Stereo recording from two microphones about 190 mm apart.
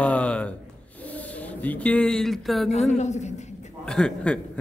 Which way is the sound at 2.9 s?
35° left (ahead or behind).